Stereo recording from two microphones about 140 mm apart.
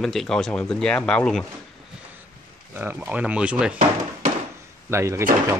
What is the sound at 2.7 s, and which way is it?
Speech, 15° right (ahead or behind).